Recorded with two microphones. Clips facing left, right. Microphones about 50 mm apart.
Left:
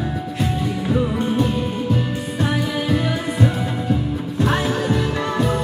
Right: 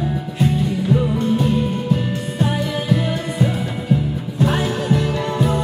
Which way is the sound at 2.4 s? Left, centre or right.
Centre.